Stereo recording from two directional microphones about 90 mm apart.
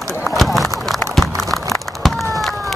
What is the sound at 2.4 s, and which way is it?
Run, centre (ahead or behind).